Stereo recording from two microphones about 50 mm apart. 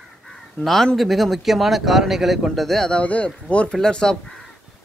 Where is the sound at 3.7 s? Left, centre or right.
Centre.